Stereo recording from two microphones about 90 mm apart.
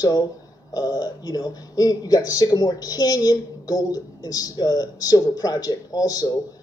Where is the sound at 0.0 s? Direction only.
50° left (ahead or behind).